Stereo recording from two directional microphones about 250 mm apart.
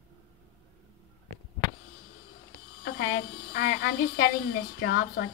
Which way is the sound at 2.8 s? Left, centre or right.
Left.